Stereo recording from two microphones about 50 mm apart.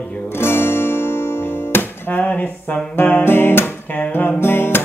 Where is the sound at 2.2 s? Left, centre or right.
Left.